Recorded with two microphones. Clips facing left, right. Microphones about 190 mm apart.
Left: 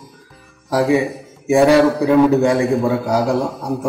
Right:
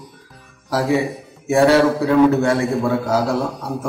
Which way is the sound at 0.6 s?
15° left (ahead or behind).